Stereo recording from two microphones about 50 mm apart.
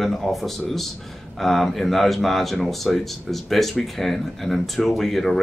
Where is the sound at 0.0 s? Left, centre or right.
Centre.